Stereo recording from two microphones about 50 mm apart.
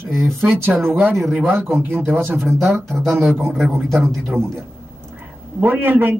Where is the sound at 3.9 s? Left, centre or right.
Centre.